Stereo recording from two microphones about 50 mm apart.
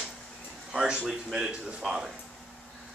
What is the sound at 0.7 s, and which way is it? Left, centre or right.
A man's voice, centre.